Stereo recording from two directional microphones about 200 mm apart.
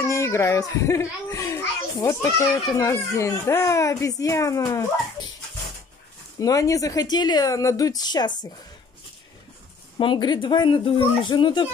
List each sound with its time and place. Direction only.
0.0 s a child's voice: 15° left (ahead or behind)
6.4 s speech: 15° left (ahead or behind)
9.9 s speech: 25° left (ahead or behind)